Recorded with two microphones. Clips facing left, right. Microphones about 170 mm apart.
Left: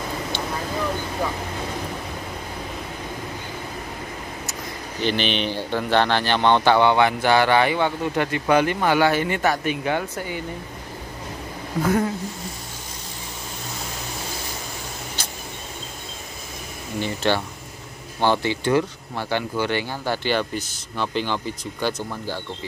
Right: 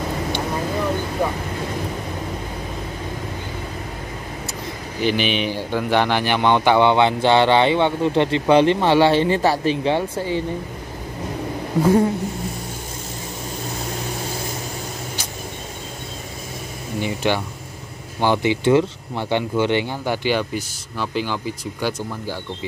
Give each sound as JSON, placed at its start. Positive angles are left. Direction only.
{"t": 5.0, "sound": "speech", "side_deg": -10}
{"t": 11.8, "sound": "speech", "side_deg": -30}
{"t": 17.0, "sound": "speech", "side_deg": -15}